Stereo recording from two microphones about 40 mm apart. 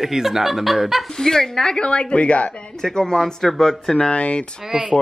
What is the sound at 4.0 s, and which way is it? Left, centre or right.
Dishes, left.